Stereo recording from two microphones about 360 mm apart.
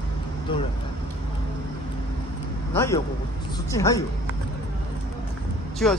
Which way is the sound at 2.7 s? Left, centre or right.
Centre.